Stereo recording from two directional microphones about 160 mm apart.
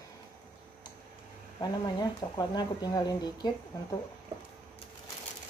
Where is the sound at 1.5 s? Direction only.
25° left (ahead or behind).